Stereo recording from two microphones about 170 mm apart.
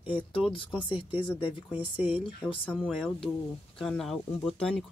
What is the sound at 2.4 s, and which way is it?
Speech, 10° left (ahead or behind).